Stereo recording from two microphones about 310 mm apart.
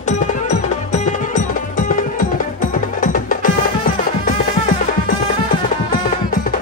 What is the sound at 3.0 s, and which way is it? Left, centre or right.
Music, left.